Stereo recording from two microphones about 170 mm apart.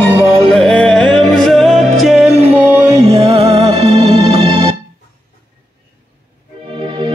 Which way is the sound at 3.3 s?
35° right (ahead or behind).